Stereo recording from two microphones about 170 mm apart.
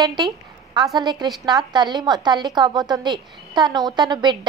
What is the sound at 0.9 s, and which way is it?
A woman's voice, 25° right (ahead or behind).